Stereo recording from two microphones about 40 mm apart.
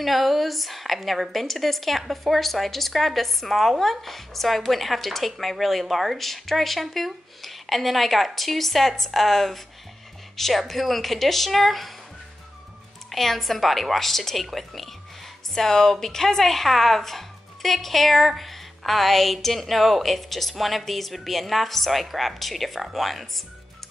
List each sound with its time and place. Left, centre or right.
0.0 s a woman's voice: centre
13.1 s a woman's voice: centre